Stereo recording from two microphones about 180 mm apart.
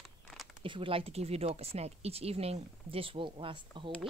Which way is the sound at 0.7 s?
30° right (ahead or behind).